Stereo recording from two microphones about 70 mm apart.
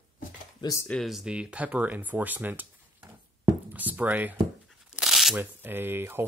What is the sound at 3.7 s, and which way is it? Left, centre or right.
Speech, right.